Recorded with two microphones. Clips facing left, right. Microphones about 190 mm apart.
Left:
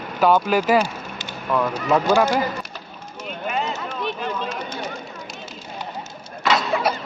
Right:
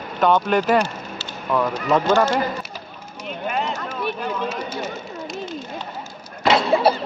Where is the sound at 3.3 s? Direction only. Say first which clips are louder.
Right 1 dB; centre (ahead or behind).